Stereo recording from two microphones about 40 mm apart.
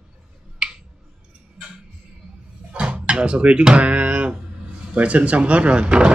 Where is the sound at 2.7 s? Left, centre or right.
Right.